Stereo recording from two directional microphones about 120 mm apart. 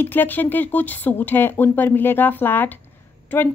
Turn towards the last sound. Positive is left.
turn(degrees=15)  # may be behind; listen again after turning